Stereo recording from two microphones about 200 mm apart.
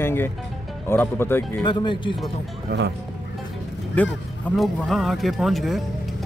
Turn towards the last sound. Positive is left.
turn(degrees=0)  # may be behind; listen again after turning